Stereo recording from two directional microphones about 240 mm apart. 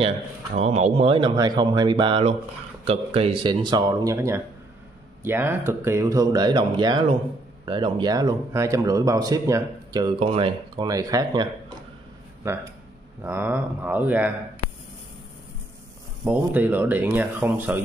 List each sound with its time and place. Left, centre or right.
0.6 s speech: right
13.2 s speech: centre
16.3 s speech: centre